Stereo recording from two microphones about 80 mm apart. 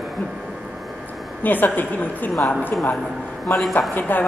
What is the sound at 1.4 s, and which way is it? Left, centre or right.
Speech, left.